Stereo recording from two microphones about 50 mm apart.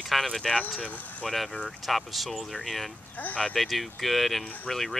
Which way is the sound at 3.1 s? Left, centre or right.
Left.